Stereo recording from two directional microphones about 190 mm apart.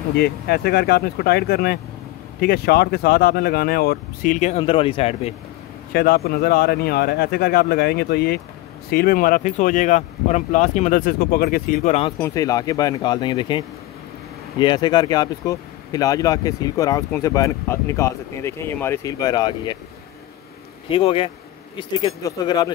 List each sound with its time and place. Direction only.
0.2 s speech: 60° left (ahead or behind); by 5.3 s 30° left (ahead or behind)
5.9 s speech: 55° left (ahead or behind); by 12.1 s 35° left (ahead or behind)
12.2 s speech: 20° left (ahead or behind)
20.9 s speech: 30° left (ahead or behind)